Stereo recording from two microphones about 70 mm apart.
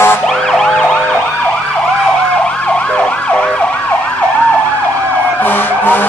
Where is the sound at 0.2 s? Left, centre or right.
Centre.